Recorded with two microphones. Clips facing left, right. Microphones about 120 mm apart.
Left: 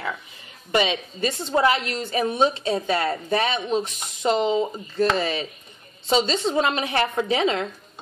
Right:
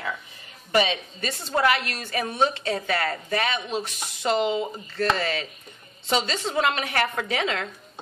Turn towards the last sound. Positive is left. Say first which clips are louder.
# left 5 dB
turn(degrees=25)  # may be behind; listen again after turning